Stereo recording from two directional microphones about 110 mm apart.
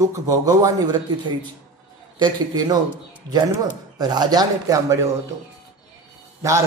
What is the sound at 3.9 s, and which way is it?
Speech, 40° right (ahead or behind).